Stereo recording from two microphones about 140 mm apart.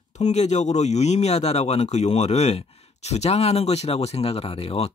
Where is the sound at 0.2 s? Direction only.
55° left (ahead or behind).